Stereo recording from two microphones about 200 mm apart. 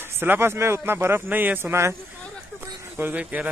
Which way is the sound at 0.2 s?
10° right (ahead or behind).